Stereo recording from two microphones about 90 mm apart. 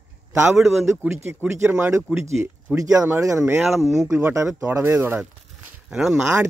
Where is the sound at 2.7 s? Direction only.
40° right (ahead or behind).